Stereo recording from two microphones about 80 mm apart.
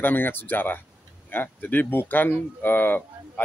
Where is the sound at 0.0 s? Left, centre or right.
Left.